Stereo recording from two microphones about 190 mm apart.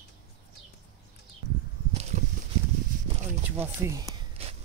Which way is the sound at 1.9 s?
35° right (ahead or behind).